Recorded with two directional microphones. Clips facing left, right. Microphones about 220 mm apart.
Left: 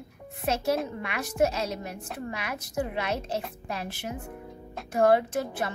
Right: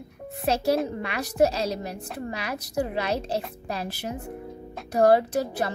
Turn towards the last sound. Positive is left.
turn(degrees=-35)  # may be behind; listen again after turning